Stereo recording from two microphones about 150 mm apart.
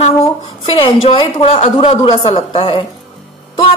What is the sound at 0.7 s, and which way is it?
A woman's voice, 35° left (ahead or behind).